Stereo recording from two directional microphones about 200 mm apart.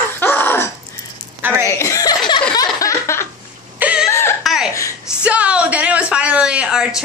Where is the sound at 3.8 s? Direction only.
5° right (ahead or behind).